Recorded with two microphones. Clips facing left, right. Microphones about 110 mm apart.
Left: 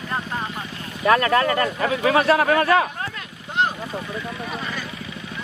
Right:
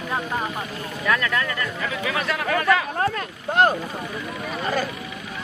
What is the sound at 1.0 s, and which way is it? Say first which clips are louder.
A man's voice: left 6 dB; 40° left (ahead or behind).